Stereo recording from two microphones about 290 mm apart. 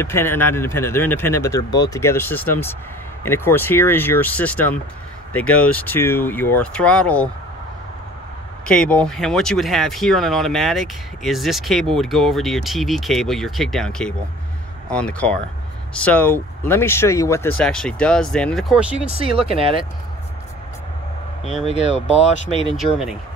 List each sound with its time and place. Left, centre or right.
0.0 s speech: centre
8.6 s speech: centre
19.0 s speech: centre
21.9 s speech: left